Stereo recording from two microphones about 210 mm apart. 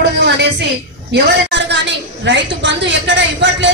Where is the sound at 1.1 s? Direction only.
55° right (ahead or behind).